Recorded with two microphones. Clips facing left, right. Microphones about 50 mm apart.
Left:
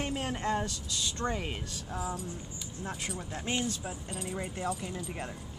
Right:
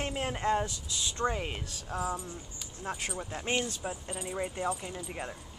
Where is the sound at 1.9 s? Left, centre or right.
Right.